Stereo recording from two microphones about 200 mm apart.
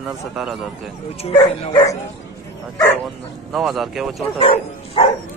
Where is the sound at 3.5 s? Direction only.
Centre (ahead or behind).